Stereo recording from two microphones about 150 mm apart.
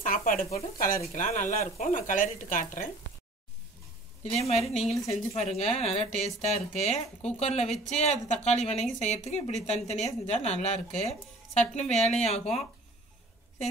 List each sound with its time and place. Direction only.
0.0 s speech: 65° left (ahead or behind)
4.2 s a woman's voice: 45° left (ahead or behind)